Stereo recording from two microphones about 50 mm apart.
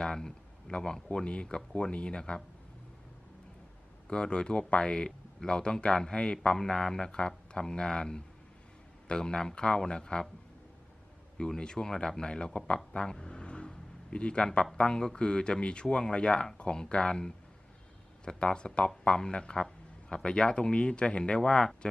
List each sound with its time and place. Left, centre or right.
0.0 s speech: centre
4.1 s speech: centre
11.3 s speech: centre